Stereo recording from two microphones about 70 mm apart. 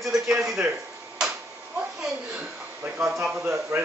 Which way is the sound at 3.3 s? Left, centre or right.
Right.